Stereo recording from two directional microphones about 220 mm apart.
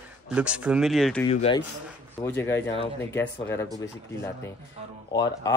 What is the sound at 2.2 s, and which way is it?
Speech, 10° left (ahead or behind).